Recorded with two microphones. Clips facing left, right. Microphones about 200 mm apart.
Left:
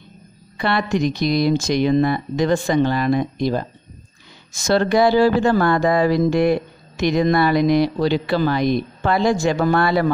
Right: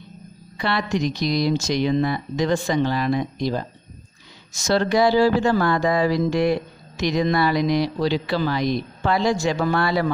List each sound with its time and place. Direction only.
0.6 s speech: 55° left (ahead or behind)